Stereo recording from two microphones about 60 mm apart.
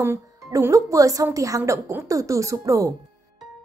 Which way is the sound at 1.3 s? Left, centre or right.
Right.